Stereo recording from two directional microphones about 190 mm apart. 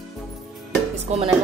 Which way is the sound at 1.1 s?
35° right (ahead or behind).